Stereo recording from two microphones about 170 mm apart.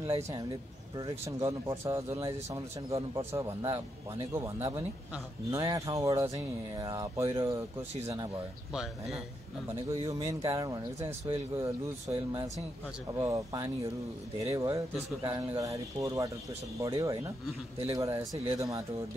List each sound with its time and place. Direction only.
0.0 s speech: 30° right (ahead or behind)
1.2 s speech: 15° right (ahead or behind)
8.7 s speech: centre (ahead or behind)
9.8 s speech: 20° right (ahead or behind)